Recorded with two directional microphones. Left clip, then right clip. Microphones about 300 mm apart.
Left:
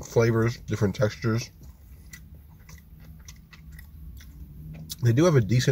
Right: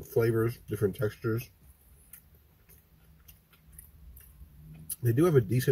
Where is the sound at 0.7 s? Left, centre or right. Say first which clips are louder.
Left 4 dB; centre.